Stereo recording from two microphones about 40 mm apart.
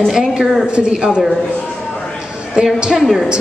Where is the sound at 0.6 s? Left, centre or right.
Right.